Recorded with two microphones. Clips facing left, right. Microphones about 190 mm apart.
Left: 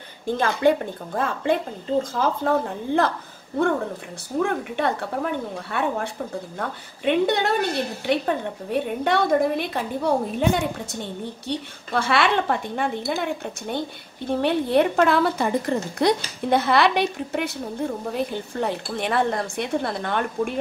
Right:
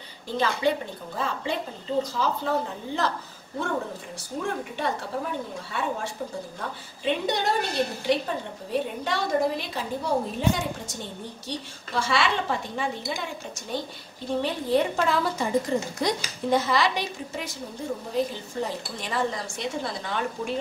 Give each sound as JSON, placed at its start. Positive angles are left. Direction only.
{"t": 0.4, "sound": "a woman's voice", "side_deg": 50}
{"t": 4.4, "sound": "a woman's voice", "side_deg": 60}